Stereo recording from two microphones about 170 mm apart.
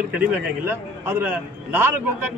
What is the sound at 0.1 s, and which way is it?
A man's voice, 10° right (ahead or behind).